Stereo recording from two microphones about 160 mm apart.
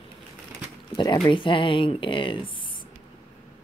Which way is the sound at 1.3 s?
30° left (ahead or behind).